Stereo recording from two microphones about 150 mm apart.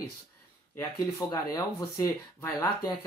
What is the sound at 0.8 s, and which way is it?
Speech, 25° left (ahead or behind).